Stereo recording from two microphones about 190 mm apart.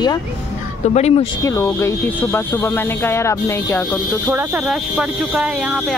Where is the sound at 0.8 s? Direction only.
35° left (ahead or behind).